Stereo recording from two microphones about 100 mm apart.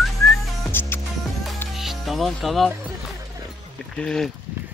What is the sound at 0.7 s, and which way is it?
Music, 20° left (ahead or behind).